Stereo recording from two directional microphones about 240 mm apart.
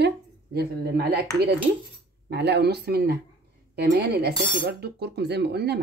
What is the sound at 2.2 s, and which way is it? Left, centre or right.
Speech, right.